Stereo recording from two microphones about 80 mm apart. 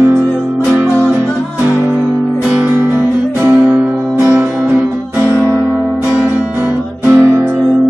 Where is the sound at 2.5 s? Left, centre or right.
Centre.